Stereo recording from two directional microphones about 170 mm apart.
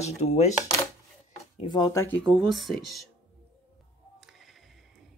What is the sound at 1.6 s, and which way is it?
Speech, 25° left (ahead or behind).